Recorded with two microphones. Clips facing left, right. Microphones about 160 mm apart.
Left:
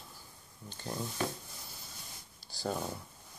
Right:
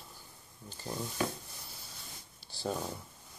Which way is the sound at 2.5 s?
Centre (ahead or behind).